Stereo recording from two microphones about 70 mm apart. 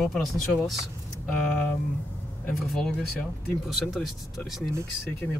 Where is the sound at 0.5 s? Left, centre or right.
Centre.